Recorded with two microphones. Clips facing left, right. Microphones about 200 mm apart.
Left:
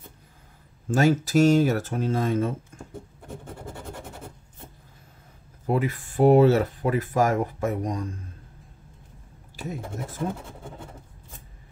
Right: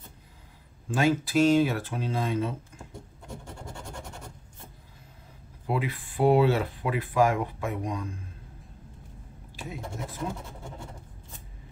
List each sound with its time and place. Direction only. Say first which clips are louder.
0.8 s speech: left 4 dB; 45° left (ahead or behind)
5.7 s speech: left 5 dB; 45° left (ahead or behind)